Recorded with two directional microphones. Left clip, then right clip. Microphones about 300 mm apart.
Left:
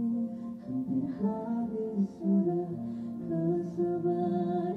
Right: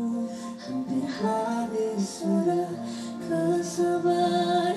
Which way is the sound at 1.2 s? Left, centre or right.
Centre.